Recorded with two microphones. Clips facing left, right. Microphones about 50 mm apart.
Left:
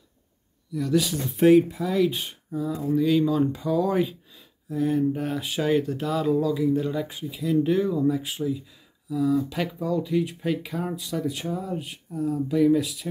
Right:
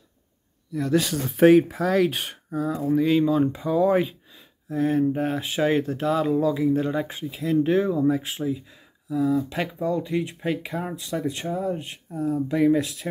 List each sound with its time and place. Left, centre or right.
0.7 s speech: right
1.3 s speech: right
9.6 s speech: right
10.1 s speech: centre
10.6 s speech: right
11.1 s speech: centre
12.1 s speech: right